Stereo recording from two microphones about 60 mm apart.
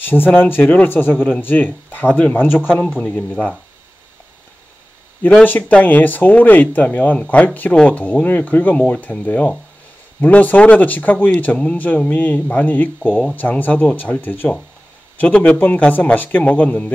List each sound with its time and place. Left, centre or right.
0.0 s speech: left
3.1 s speech: left
5.3 s speech: left
8.7 s speech: centre
11.5 s speech: centre
12.1 s speech: left
15.1 s speech: left